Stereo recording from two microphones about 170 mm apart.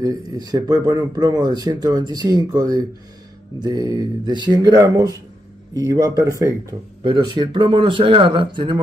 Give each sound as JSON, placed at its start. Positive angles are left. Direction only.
{"t": 0.0, "sound": "speech", "side_deg": -25}